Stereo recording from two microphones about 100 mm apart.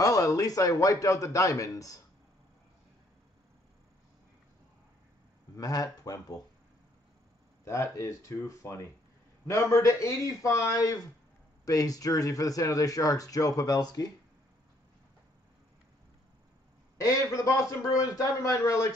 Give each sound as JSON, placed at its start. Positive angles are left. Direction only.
{"t": 0.0, "sound": "speech", "side_deg": 35}
{"t": 5.6, "sound": "speech", "side_deg": 40}
{"t": 7.6, "sound": "speech", "side_deg": 30}
{"t": 17.0, "sound": "speech", "side_deg": 35}